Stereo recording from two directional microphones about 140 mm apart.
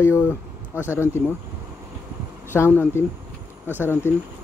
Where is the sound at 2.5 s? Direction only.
15° left (ahead or behind).